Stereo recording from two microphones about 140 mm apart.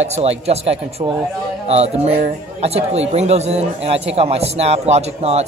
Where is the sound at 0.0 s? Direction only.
50° right (ahead or behind).